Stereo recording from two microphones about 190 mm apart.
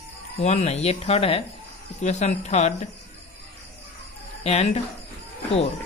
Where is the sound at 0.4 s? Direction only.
35° left (ahead or behind).